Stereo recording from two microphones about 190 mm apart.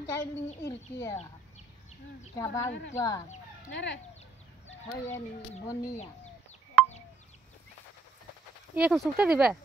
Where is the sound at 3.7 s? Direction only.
70° left (ahead or behind).